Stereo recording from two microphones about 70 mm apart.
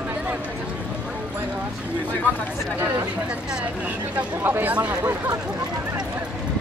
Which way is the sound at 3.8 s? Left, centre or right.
Right.